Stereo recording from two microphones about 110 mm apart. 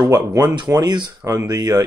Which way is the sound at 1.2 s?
30° right (ahead or behind).